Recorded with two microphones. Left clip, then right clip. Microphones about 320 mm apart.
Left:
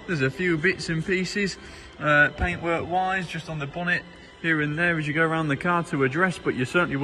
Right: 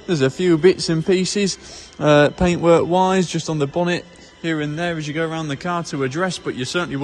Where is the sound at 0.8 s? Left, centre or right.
Centre.